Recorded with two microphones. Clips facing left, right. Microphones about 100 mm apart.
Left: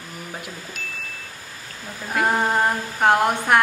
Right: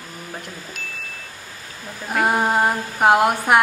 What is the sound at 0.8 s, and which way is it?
Chime, centre (ahead or behind).